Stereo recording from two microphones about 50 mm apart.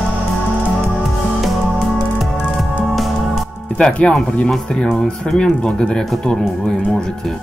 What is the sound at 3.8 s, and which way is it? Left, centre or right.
Speech, centre.